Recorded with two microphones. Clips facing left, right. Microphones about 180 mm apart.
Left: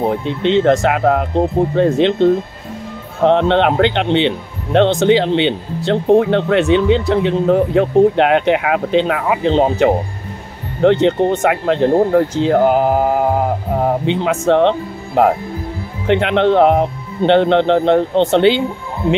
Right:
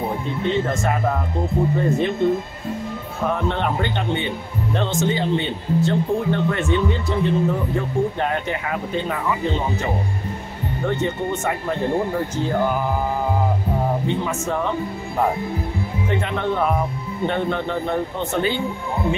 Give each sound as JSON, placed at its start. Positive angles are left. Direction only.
{"t": 0.4, "sound": "speech", "side_deg": 90}
{"t": 4.7, "sound": "speech", "side_deg": 75}
{"t": 5.9, "sound": "speech", "side_deg": 70}
{"t": 10.8, "sound": "speech", "side_deg": 90}